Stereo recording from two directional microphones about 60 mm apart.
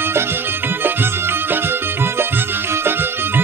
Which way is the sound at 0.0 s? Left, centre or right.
Right.